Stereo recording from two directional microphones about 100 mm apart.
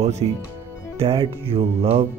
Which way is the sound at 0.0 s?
90° right.